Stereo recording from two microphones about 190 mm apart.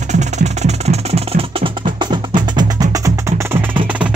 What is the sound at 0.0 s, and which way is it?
Music, 40° right (ahead or behind).